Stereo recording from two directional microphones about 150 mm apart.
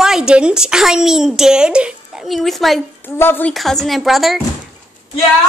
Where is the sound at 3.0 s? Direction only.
15° left (ahead or behind).